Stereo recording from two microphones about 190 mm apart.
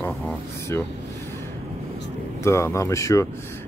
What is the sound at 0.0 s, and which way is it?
Vehicle, 10° left (ahead or behind).